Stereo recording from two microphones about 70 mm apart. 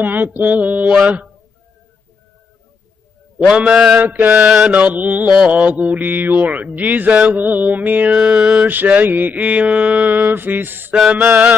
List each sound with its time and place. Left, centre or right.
0.0 s mantra: right
0.9 s a man's voice: centre
3.3 s a man's voice: centre
4.0 s mantra: right
8.2 s a man's voice: centre
8.6 s mantra: right
11.1 s a man's voice: centre